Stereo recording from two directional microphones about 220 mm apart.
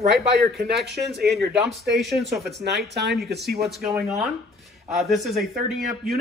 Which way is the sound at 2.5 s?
50° right (ahead or behind).